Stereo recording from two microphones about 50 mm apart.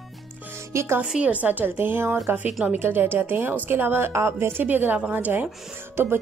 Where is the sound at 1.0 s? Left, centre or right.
Centre.